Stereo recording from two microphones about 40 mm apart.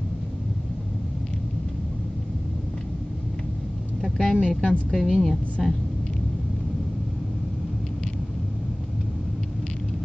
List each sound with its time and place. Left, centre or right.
4.4 s a woman's voice: centre
4.9 s a woman's voice: centre